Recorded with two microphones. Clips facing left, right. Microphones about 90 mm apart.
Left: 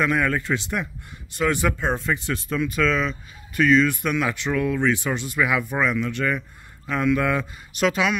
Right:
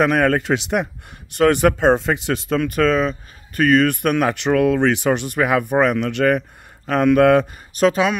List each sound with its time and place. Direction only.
0.0 s speech: 70° right (ahead or behind)
1.3 s speech: 65° right (ahead or behind); by 2.7 s 90° right
2.7 s speech: 45° right (ahead or behind); by 7.4 s 65° right (ahead or behind)
7.8 s speech: 35° right (ahead or behind)